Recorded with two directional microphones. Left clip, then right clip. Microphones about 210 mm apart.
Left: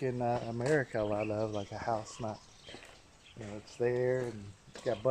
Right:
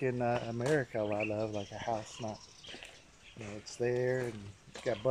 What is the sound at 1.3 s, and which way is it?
Speech, 10° left (ahead or behind).